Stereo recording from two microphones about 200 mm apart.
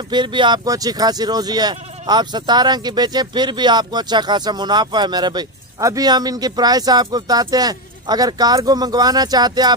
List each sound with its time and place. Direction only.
0.1 s speech: 25° right (ahead or behind)